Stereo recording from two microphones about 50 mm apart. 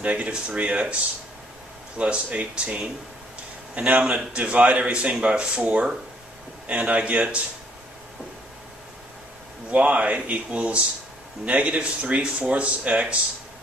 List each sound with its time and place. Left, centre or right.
0.0 s speech: right
2.0 s speech: right
9.7 s speech: right